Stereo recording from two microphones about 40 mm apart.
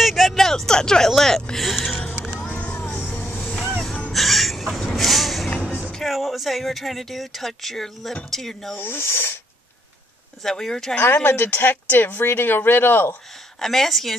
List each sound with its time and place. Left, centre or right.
0.0 s a sound: centre
1.1 s speech: centre
2.6 s music: left
4.1 s a sound: centre
5.9 s speech: centre
8.7 s speech: left
10.4 s speech: centre
11.2 s speech: left
13.6 s speech: centre